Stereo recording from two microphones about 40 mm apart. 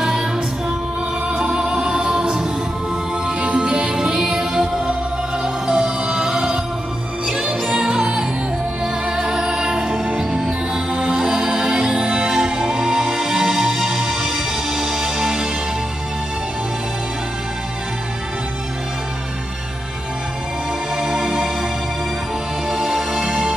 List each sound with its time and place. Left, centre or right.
0.0 s music: centre
1.3 s music: centre
10.4 s music: centre
20.9 s music: centre
22.7 s music: centre